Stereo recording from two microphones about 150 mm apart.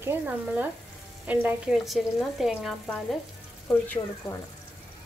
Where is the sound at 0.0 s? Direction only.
15° right (ahead or behind).